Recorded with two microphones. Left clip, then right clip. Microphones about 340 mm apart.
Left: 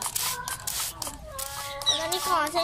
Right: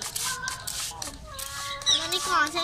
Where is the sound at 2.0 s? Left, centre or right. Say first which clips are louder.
Right 1 dB; centre.